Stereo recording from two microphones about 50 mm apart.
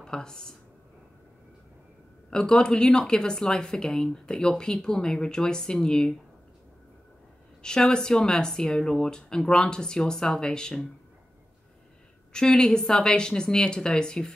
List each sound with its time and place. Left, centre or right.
0.0 s speech: centre
2.3 s speech: centre
7.6 s speech: centre
12.3 s speech: centre